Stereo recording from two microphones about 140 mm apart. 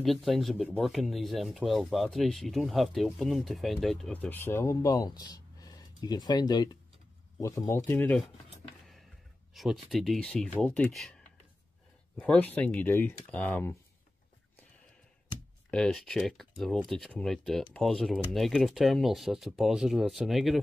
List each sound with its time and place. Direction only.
0.0 s speech: centre (ahead or behind); by 8.2 s 15° left (ahead or behind)
9.5 s speech: centre (ahead or behind)
12.2 s speech: 10° left (ahead or behind)
15.7 s speech: 5° left (ahead or behind)